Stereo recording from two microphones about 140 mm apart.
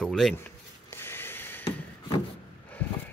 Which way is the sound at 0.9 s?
15° left (ahead or behind).